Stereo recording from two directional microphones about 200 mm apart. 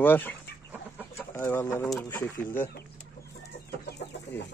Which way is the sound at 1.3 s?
10° left (ahead or behind).